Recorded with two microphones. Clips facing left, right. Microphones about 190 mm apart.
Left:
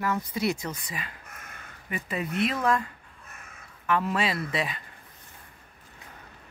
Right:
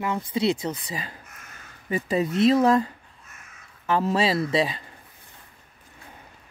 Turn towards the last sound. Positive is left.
turn(degrees=-30)  # may be behind; listen again after turning